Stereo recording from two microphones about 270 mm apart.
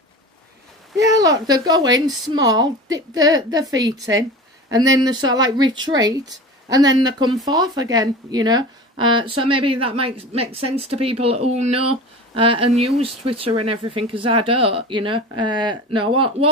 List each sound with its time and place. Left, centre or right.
0.9 s a woman's voice: centre